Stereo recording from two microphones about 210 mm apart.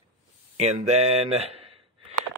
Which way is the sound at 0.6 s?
30° right (ahead or behind).